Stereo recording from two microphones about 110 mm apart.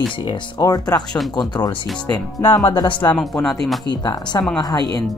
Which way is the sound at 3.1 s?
5° left (ahead or behind).